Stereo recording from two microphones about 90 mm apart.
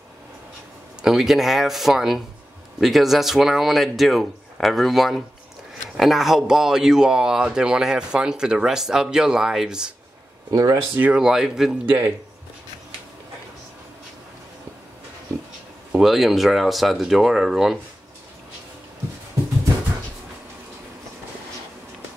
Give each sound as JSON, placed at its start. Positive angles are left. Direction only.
{"t": 1.0, "sound": "speech", "side_deg": -5}
{"t": 10.5, "sound": "speech", "side_deg": -40}
{"t": 11.1, "sound": "speech", "side_deg": -5}
{"t": 11.8, "sound": "a man's voice", "side_deg": -20}
{"t": 15.9, "sound": "speech", "side_deg": -5}